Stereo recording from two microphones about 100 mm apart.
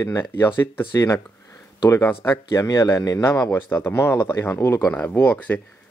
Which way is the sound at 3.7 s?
15° left (ahead or behind).